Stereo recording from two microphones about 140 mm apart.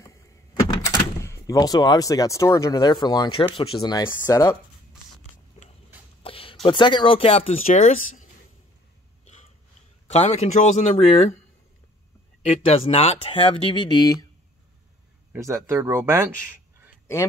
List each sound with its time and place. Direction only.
0.0 s speech: 20° left (ahead or behind)
4.1 s speech: 20° left (ahead or behind)
6.2 s a sound: 40° left (ahead or behind)
6.6 s speech: 35° left (ahead or behind)
7.6 s speech: 65° left (ahead or behind)
10.0 s speech: 50° left (ahead or behind)
12.6 s speech: 45° left (ahead or behind)
15.3 s speech: 20° right (ahead or behind)